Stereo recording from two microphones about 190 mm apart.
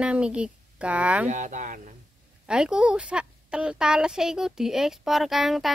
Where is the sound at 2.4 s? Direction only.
5° right (ahead or behind).